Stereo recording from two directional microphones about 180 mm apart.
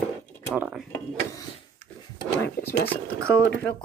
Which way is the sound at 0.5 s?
10° right (ahead or behind).